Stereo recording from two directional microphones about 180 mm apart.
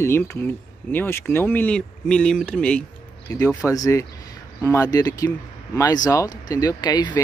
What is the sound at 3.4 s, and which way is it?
Speech, 15° left (ahead or behind).